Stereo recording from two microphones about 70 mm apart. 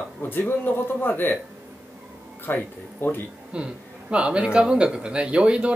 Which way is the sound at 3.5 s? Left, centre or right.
Centre.